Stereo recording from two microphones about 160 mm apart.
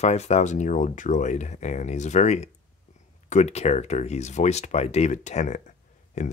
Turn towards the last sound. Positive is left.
turn(degrees=50)  # may be behind; listen again after turning